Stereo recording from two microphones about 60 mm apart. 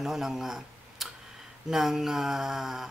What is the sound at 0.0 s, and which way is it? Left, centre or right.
Speech, centre.